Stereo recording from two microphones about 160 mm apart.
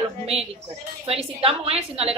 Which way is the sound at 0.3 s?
40° right (ahead or behind).